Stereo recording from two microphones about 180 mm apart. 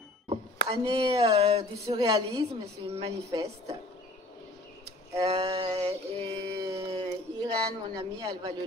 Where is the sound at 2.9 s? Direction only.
30° right (ahead or behind).